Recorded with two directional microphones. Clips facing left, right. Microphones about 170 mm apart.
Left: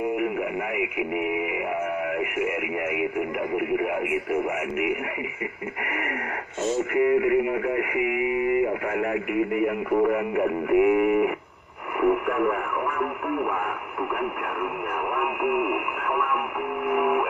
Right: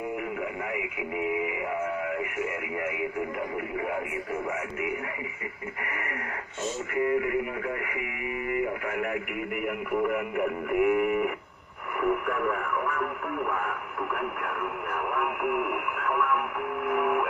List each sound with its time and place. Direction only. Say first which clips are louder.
0.7 s speech: left 5 dB; 20° left (ahead or behind)
6.9 s speech: left 5 dB; 20° left (ahead or behind)
7.6 s radio: left 8 dB; 25° left (ahead or behind)
9.7 s speech: left 5 dB; 35° left (ahead or behind)
15.1 s radio: left 4 dB; 10° left (ahead or behind)